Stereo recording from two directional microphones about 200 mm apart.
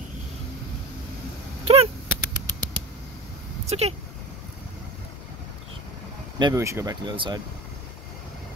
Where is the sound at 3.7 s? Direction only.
30° right (ahead or behind).